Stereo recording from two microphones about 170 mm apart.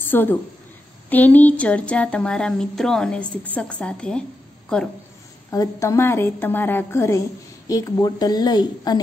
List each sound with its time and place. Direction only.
0.0 s a woman's voice: 10° left (ahead or behind)
5.5 s a woman's voice: 20° left (ahead or behind)